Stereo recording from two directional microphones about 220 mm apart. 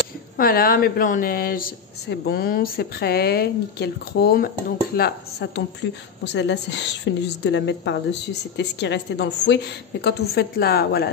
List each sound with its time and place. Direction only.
0.4 s speech: 40° left (ahead or behind)